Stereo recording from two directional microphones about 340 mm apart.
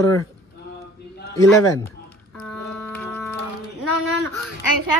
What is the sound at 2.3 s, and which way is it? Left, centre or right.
Music, centre.